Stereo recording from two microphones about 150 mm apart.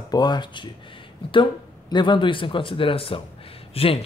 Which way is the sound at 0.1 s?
30° left (ahead or behind).